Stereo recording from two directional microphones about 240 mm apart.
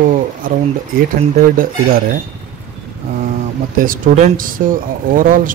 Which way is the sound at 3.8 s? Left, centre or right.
Right.